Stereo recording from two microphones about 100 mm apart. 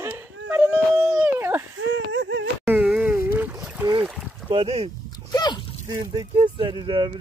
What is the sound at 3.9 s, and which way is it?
Boat, 60° right (ahead or behind).